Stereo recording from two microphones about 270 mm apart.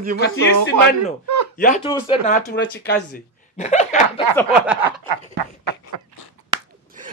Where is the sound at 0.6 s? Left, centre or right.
Right.